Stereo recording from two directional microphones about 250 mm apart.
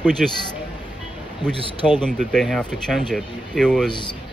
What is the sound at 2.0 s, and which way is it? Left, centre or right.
Speech, centre.